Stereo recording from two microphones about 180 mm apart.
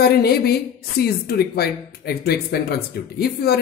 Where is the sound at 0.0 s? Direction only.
60° left (ahead or behind).